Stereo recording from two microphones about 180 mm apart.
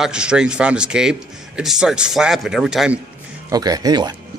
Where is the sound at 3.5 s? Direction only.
20° right (ahead or behind).